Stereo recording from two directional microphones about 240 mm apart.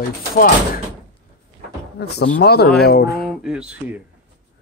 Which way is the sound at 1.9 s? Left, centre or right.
Left.